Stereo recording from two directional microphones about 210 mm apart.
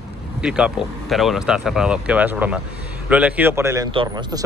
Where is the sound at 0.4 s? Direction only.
5° right (ahead or behind).